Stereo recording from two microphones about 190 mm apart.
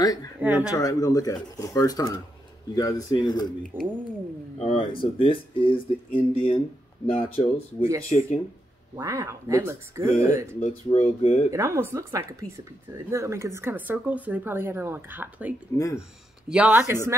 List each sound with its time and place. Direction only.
0.0 s speech: 20° left (ahead or behind)
0.4 s speech: 5° right (ahead or behind)
0.7 s speech: 20° left (ahead or behind)
3.7 s speech: 10° right (ahead or behind)
4.6 s speech: 30° left (ahead or behind)
8.9 s speech: 15° right (ahead or behind)
10.6 s speech: 35° left (ahead or behind)
11.5 s speech: 15° right (ahead or behind)